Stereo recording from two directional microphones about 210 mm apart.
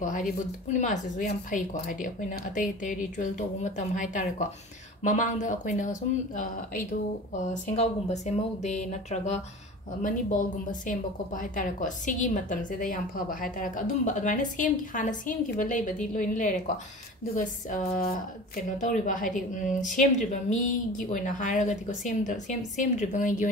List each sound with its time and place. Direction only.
0.7 s a woman's voice: 35° left (ahead or behind)